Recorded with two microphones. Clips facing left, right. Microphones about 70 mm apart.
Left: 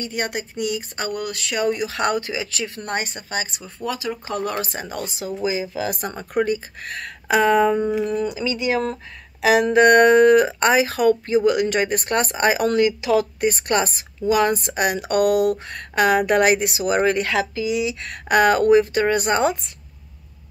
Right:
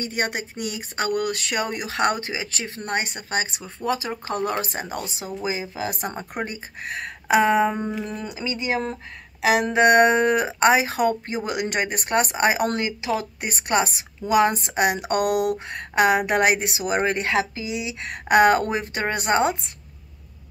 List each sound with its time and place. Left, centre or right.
1.0 s speech: right
5.4 s speech: right
7.8 s a sound: centre
8.1 s speech: right
9.4 s speech: right
12.6 s speech: right
13.5 s speech: centre